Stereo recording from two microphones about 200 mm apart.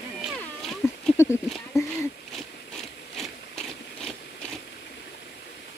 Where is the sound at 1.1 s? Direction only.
15° left (ahead or behind).